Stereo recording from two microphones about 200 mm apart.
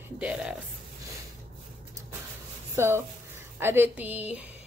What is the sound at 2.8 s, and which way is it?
A woman's voice, 15° right (ahead or behind).